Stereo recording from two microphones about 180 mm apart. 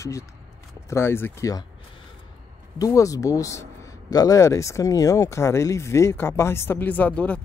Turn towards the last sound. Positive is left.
turn(degrees=10)  # may be behind; listen again after turning